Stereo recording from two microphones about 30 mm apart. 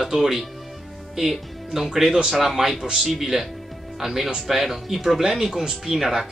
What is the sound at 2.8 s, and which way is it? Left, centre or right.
Speech, right.